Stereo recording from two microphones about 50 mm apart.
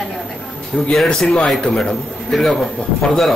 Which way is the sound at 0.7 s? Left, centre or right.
Left.